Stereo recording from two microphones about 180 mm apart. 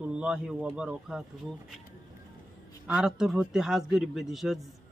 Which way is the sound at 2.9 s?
5° right (ahead or behind).